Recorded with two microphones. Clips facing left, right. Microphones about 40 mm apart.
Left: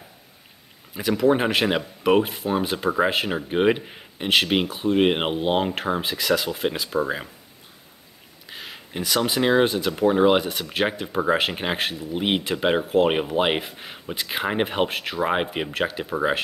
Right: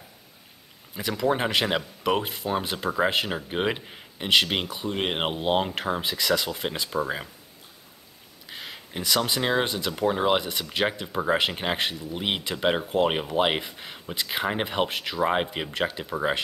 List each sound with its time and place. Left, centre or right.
0.9 s speech: centre
2.6 s speech: centre
8.5 s speech: centre